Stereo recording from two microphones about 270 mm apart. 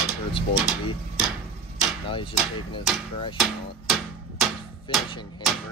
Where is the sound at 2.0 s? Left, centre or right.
Centre.